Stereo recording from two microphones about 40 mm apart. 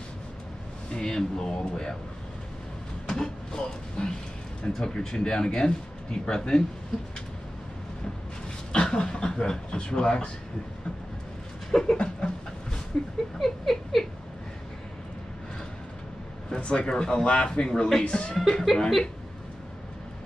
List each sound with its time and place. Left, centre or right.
0.9 s speech: centre
3.1 s vehicle: centre
4.6 s speech: left
8.7 s speech: left
11.7 s speech: centre
13.4 s a sound: centre
16.4 s speech: left
18.5 s speech: centre